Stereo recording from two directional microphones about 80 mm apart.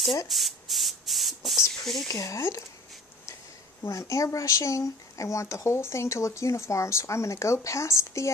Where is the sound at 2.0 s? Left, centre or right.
Left.